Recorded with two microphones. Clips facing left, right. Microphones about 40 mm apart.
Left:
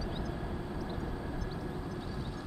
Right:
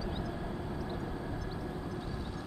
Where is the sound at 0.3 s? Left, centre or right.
Centre.